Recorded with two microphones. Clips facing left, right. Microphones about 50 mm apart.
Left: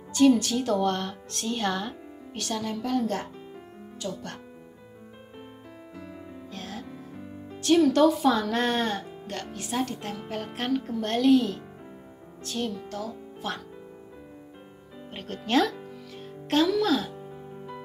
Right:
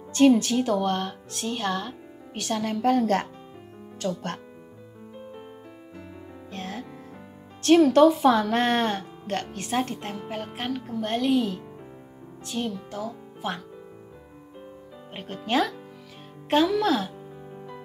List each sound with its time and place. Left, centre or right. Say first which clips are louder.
0.1 s speech: right 2 dB; right
0.7 s speech: even; centre
2.5 s a woman's voice: right 6 dB; right
6.5 s music: right 4 dB; right
7.6 s speech: right 3 dB; right
10.2 s speech: left 1 dB; centre
15.0 s speech: right 1 dB; centre